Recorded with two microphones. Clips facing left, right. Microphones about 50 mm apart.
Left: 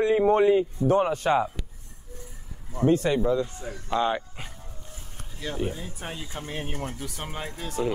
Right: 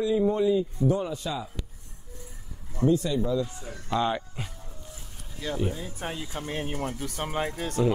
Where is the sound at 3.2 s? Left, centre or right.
Left.